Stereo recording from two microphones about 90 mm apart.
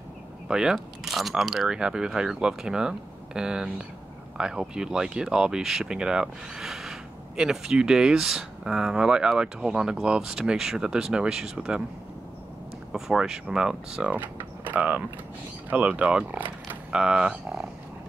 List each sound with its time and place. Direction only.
0.5 s speech: 10° right (ahead or behind)
12.9 s speech: 5° right (ahead or behind)
14.1 s a sound: 20° right (ahead or behind)
15.7 s speech: 15° right (ahead or behind)
16.9 s speech: 10° right (ahead or behind)